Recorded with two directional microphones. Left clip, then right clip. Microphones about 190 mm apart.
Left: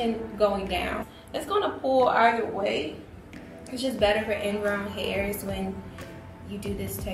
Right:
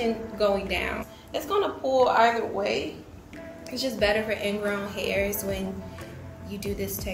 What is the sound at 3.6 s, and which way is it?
A woman's voice, 15° right (ahead or behind).